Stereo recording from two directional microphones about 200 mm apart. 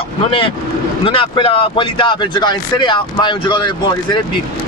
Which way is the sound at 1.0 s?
25° left (ahead or behind).